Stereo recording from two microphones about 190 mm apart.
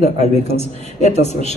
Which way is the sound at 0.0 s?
35° left (ahead or behind).